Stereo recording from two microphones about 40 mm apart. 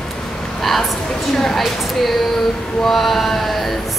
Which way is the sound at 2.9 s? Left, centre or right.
Centre.